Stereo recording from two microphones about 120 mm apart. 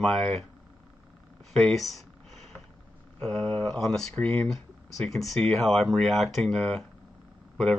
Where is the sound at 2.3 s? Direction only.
Centre (ahead or behind).